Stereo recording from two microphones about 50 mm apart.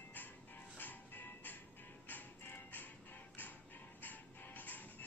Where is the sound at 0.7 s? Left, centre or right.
Left.